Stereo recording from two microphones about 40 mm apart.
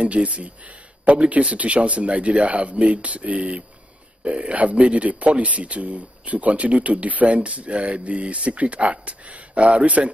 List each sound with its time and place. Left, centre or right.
0.0 s speech: right